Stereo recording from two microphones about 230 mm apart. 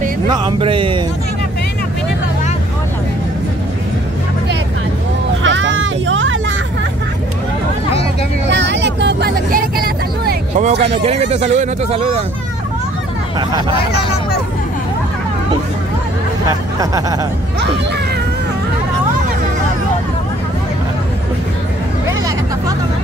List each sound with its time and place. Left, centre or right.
0.3 s speech: right
5.4 s vehicle: right
8.5 s vehicle: right
11.0 s speech: right
13.4 s speech: centre
16.4 s speech: centre